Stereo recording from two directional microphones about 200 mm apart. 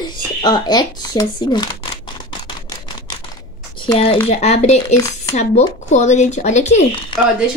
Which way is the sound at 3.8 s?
30° left (ahead or behind).